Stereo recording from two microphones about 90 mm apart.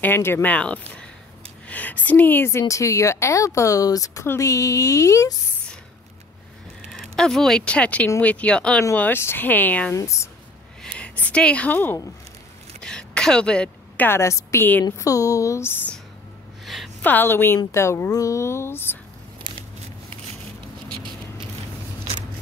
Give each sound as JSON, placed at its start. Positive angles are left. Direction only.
{"t": 0.0, "sound": "speech", "side_deg": 25}
{"t": 2.7, "sound": "speech", "side_deg": 35}
{"t": 6.9, "sound": "speech", "side_deg": 5}
{"t": 9.9, "sound": "speech", "side_deg": 35}
{"t": 10.8, "sound": "speech", "side_deg": 15}
{"t": 12.8, "sound": "a sound", "side_deg": 10}
{"t": 14.0, "sound": "speech", "side_deg": 30}
{"t": 15.0, "sound": "speech", "side_deg": 40}
{"t": 16.6, "sound": "a sound", "side_deg": 0}
{"t": 17.0, "sound": "speech", "side_deg": 20}